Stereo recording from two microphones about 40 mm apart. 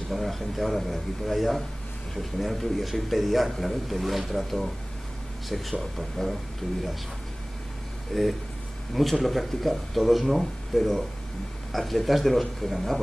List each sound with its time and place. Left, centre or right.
0.1 s a man's voice: centre
6.6 s speech: centre
8.1 s a man's voice: centre